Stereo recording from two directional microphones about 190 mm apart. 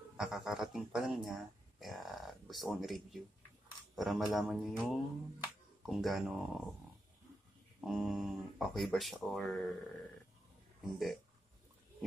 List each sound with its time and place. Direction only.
0.2 s a man's voice: 5° right (ahead or behind)
7.8 s speech: centre (ahead or behind)
10.8 s speech: centre (ahead or behind)